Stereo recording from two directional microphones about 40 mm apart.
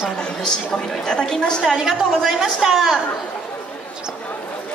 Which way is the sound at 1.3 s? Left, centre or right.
Centre.